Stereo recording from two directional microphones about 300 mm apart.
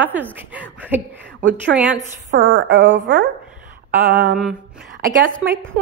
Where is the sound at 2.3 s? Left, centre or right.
Right.